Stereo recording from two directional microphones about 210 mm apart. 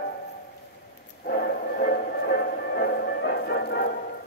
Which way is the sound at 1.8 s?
50° left (ahead or behind).